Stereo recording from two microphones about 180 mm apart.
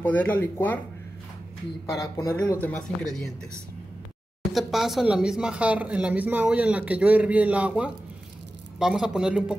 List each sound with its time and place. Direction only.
0.0 s speech: 10° left (ahead or behind)
2.0 s speech: 15° left (ahead or behind)
2.6 s speech: 5° left (ahead or behind)
4.5 s speech: centre (ahead or behind)